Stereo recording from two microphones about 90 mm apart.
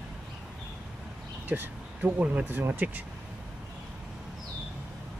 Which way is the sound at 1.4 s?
20° right (ahead or behind).